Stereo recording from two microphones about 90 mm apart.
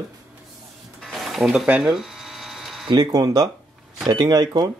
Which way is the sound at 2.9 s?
45° right (ahead or behind).